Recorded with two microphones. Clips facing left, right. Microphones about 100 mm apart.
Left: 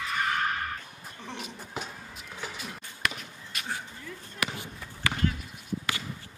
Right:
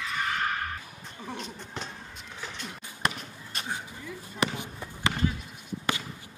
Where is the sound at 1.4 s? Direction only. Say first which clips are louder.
Even; 5° left (ahead or behind).